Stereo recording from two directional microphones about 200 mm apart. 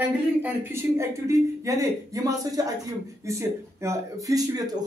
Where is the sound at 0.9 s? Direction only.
15° right (ahead or behind).